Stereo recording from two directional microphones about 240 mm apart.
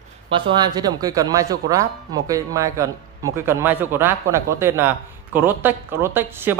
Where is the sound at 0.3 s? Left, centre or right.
Centre.